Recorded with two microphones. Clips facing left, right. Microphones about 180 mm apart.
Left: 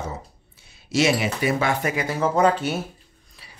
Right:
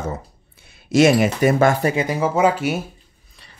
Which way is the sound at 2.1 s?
10° right (ahead or behind).